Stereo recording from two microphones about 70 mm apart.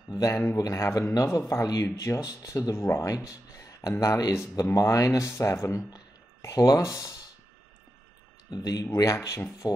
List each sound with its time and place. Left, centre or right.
0.1 s speech: left
2.7 s speech: left
3.3 s a sound: left
4.0 s speech: left
8.5 s speech: left
8.9 s speech: left